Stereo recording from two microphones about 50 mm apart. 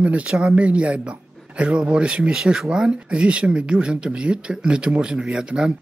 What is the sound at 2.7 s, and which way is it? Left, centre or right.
Speech, centre.